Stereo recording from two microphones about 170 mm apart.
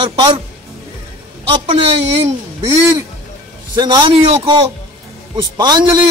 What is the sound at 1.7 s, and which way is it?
Speech, 35° right (ahead or behind).